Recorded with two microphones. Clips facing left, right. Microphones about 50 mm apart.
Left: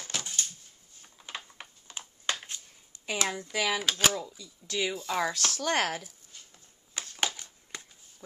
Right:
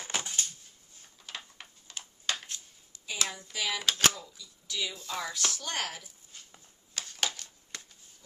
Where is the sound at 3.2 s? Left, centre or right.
Left.